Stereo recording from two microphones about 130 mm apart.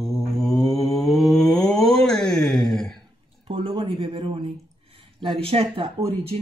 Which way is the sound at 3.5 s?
40° right (ahead or behind).